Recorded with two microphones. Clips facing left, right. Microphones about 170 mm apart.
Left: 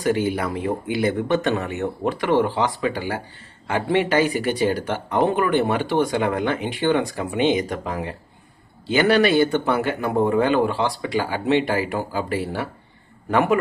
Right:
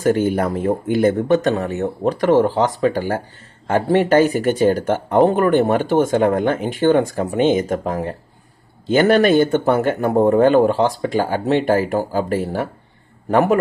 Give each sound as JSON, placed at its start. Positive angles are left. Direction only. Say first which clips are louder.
{"t": 0.0, "sound": "a man's voice", "louder": "right 5 dB", "side_deg": -45}